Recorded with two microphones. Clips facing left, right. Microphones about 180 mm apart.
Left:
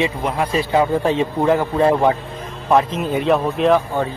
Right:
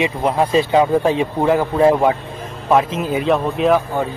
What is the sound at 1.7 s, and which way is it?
Speech, centre (ahead or behind).